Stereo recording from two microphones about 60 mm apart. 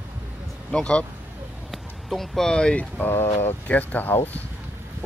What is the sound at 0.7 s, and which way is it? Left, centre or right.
Speech, centre.